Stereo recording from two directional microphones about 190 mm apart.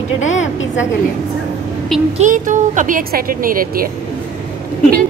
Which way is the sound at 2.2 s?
40° right (ahead or behind).